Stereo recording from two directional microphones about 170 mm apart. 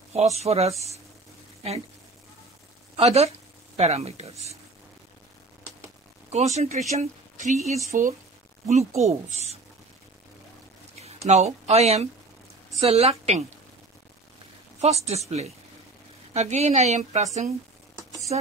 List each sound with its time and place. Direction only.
0.1 s speech: 40° right (ahead or behind)
3.0 s speech: 40° right (ahead or behind)
6.3 s speech: 40° right (ahead or behind)
11.0 s speech: 40° right (ahead or behind)
14.8 s speech: 40° right (ahead or behind)